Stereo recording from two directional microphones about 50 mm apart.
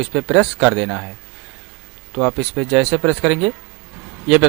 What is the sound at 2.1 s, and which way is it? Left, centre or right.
Speech, centre.